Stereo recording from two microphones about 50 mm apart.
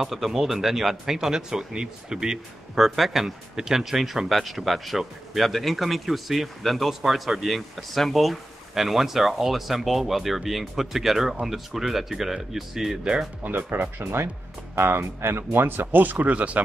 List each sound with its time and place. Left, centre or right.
0.0 s speech: centre
13.0 s speech: centre
13.4 s speech: right
14.8 s speech: right